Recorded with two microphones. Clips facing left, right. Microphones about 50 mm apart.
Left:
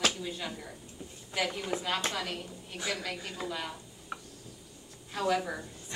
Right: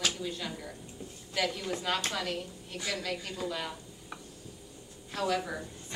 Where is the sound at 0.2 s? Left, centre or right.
Centre.